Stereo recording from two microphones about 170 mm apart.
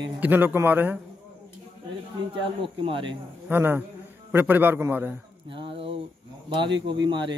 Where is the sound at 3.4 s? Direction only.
10° right (ahead or behind).